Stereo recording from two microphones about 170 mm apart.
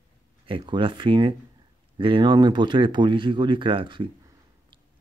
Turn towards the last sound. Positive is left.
turn(degrees=-25)  # may be behind; listen again after turning